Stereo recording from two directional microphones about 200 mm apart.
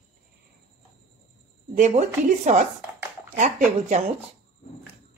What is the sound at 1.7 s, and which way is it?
Speech, 35° right (ahead or behind).